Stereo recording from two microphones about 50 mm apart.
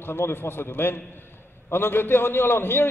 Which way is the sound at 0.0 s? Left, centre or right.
Left.